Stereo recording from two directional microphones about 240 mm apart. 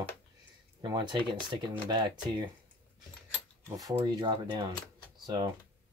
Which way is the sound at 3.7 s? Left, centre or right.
Centre.